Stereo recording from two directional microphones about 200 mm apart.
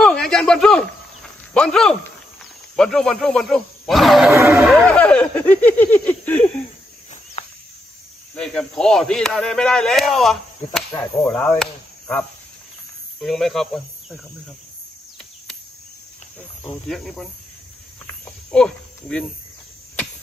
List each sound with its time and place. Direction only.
0.0 s speech: 5° left (ahead or behind)
4.3 s speech: 15° right (ahead or behind)
4.6 s speech: centre (ahead or behind)
7.4 s a sound: 30° left (ahead or behind)
8.4 s speech: 5° left (ahead or behind)
10.9 s speech: 15° left (ahead or behind)
11.2 s cricket: 5° left (ahead or behind)
13.2 s speech: centre (ahead or behind)
16.9 s speech: centre (ahead or behind)
18.0 s cricket: 15° left (ahead or behind)
18.6 s speech: 5° left (ahead or behind)